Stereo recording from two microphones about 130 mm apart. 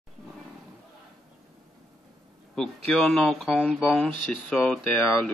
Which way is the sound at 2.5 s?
5° left (ahead or behind).